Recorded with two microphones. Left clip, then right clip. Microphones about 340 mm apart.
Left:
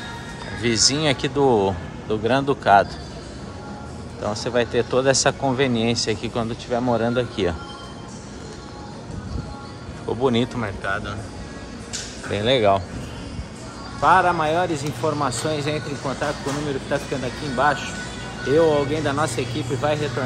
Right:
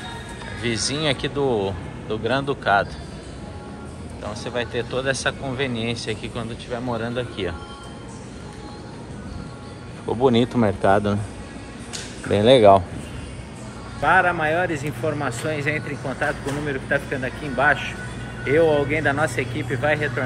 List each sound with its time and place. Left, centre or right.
0.6 s speech: centre
4.2 s speech: left
10.0 s speech: centre
12.3 s speech: centre
14.0 s speech: centre
17.6 s speech: centre